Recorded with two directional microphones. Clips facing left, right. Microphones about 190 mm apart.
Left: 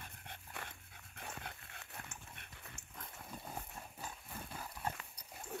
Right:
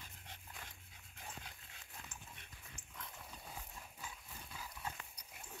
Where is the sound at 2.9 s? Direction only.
45° left (ahead or behind).